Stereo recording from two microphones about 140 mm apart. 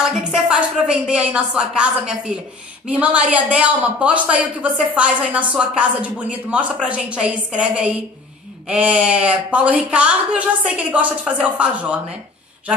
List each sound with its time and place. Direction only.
0.3 s a man's voice: 5° right (ahead or behind)